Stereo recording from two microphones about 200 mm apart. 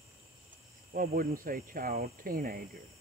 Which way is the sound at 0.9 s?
45° right (ahead or behind).